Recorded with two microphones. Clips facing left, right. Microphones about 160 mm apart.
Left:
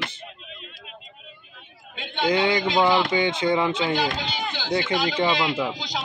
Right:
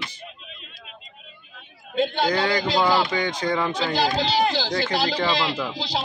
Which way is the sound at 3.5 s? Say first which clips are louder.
Left 2 dB; 15° left (ahead or behind).